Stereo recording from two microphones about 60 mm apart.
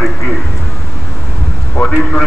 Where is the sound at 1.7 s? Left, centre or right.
Centre.